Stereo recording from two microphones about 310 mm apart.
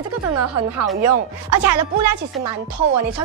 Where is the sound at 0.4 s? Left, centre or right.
Right.